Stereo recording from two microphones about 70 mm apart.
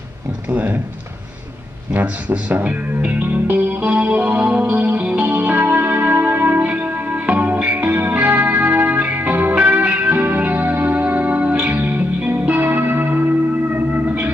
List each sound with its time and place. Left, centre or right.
0.5 s speech: right
2.0 s music: right